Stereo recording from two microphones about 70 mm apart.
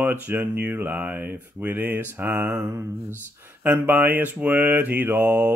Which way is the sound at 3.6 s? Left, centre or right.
Right.